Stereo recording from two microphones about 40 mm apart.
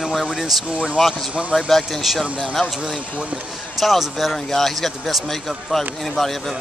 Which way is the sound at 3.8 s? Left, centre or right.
Centre.